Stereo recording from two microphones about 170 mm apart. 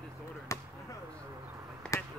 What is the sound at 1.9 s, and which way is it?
Basketball bounce, 20° left (ahead or behind).